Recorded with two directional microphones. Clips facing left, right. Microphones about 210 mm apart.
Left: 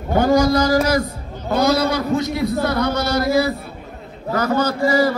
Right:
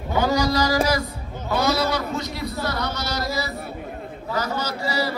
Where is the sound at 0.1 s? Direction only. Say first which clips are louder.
Left 6 dB; 50° left (ahead or behind).